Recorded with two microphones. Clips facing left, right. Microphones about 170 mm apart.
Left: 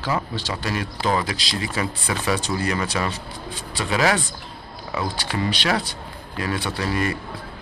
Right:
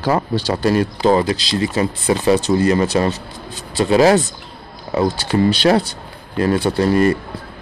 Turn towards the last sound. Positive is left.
turn(degrees=-45)  # may be behind; listen again after turning